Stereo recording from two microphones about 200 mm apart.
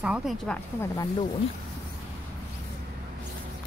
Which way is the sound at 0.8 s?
15° left (ahead or behind).